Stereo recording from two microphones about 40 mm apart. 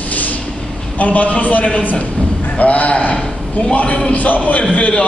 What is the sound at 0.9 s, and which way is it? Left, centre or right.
A man's voice, left.